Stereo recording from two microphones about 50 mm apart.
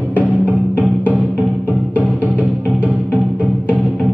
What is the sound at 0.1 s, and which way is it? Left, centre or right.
Music, right.